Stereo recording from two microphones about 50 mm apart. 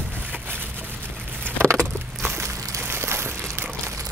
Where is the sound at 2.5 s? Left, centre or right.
Right.